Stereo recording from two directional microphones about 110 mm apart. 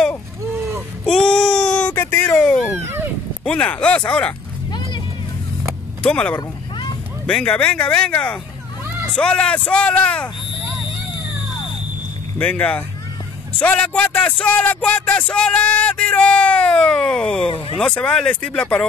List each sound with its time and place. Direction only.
0.6 s a sound: 20° right (ahead or behind)
1.0 s child singing: 10° left (ahead or behind)
2.3 s a sound: 5° left (ahead or behind)
3.4 s speech: 10° left (ahead or behind)
6.0 s speech: 10° left (ahead or behind)
12.4 s speech: 15° left (ahead or behind)